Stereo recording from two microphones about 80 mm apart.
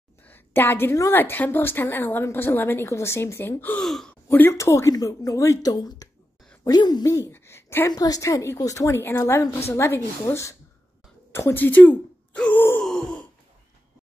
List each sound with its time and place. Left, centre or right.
0.3 s a woman's voice: left
3.8 s speech: centre
4.3 s a woman's voice: left
7.2 s speech: left
7.9 s a woman's voice: left
9.0 s a woman's voice: left
11.3 s a sound: left
12.7 s wail: centre